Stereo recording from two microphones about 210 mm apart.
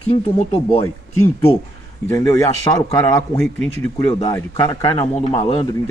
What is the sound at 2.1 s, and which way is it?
Speech, 15° left (ahead or behind).